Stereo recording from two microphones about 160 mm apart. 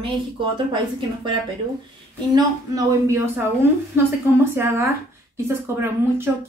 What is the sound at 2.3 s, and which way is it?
A woman's voice, 25° right (ahead or behind).